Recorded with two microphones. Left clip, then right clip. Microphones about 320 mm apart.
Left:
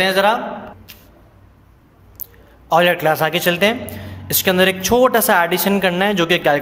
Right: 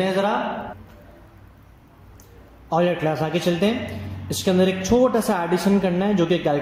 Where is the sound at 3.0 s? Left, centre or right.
Left.